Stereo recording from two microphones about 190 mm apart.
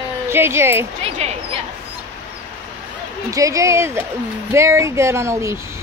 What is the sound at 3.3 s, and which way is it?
Speech, 15° right (ahead or behind).